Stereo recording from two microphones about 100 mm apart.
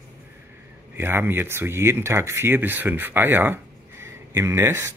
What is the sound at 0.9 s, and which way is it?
Speech, 20° right (ahead or behind).